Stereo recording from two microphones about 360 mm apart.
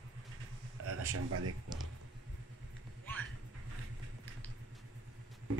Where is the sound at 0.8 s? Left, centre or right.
Right.